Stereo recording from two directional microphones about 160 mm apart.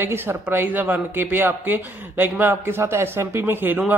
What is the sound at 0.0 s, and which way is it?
Speech, 15° right (ahead or behind).